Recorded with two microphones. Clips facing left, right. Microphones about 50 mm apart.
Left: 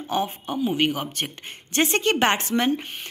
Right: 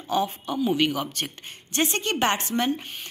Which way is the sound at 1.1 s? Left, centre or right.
Left.